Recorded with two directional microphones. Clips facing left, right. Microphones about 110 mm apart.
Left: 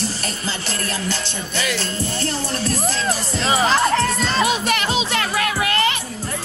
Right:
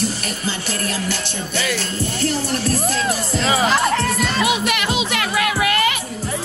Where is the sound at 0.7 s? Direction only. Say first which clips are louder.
Even; 30° left (ahead or behind).